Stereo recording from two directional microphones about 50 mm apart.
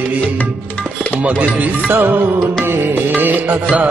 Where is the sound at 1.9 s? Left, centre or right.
Right.